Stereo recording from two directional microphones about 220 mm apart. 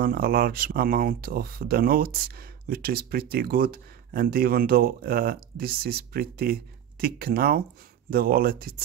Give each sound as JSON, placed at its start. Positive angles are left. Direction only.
{"t": 0.0, "sound": "speech", "side_deg": -40}